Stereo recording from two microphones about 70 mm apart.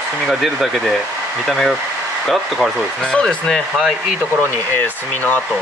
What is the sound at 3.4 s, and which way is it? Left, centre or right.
Speech, centre.